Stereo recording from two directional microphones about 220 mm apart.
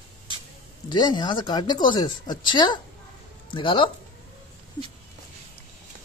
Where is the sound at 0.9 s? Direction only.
20° left (ahead or behind).